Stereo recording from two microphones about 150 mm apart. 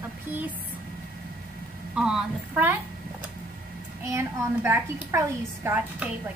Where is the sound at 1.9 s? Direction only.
5° right (ahead or behind).